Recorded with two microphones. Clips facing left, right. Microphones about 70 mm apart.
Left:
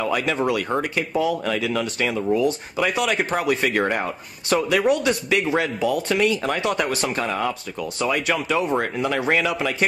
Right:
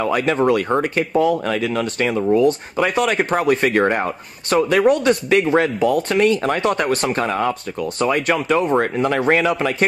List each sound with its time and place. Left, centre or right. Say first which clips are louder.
0.1 s speech: right 5 dB; right
2.8 s speech: right 4 dB; right